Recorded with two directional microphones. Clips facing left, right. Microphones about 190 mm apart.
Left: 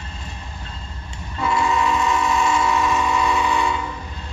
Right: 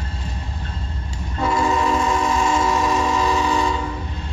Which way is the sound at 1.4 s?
40° right (ahead or behind).